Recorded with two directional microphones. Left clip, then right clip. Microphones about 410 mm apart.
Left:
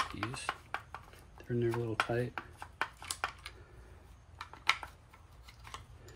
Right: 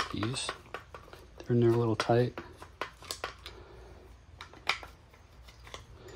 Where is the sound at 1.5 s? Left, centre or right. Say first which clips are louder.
Right 8 dB; right.